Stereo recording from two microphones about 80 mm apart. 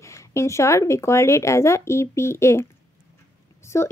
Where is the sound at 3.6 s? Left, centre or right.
Left.